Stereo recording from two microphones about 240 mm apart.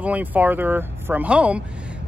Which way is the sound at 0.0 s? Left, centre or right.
Centre.